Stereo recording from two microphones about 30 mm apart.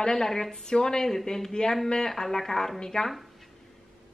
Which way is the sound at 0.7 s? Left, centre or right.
Left.